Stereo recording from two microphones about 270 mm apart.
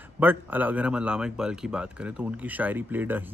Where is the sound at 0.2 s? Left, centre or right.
Centre.